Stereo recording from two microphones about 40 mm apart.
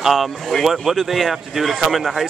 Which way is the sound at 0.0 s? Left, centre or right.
Centre.